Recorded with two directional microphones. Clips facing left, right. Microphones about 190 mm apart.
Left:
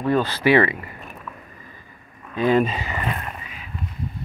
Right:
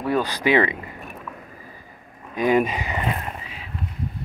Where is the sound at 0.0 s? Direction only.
10° right (ahead or behind).